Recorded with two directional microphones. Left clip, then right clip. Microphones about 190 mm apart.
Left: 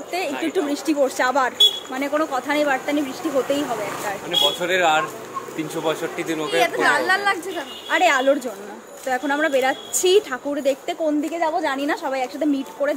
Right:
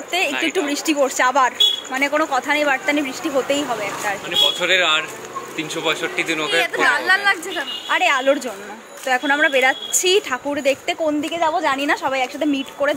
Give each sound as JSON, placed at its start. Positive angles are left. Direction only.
{"t": 0.3, "sound": "speech", "side_deg": 20}
{"t": 0.7, "sound": "speech", "side_deg": 0}
{"t": 4.6, "sound": "speech", "side_deg": 40}
{"t": 6.4, "sound": "speech", "side_deg": -5}